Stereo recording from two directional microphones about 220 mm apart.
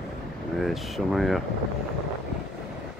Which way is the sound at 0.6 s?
Centre (ahead or behind).